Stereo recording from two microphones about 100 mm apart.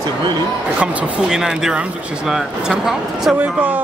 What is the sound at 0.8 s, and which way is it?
Speech, 10° right (ahead or behind).